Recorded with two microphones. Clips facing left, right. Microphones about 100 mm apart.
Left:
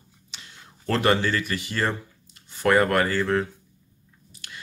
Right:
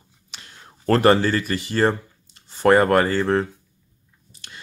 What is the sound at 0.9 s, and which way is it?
Speech, 40° right (ahead or behind).